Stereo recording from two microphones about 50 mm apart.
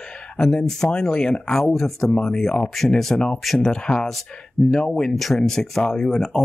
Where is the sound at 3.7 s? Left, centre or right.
Centre.